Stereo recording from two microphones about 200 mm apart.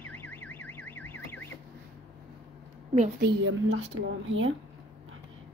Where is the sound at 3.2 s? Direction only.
65° right (ahead or behind).